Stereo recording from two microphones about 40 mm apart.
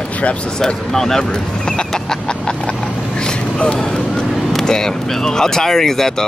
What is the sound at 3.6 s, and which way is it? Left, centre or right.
Vehicle, left.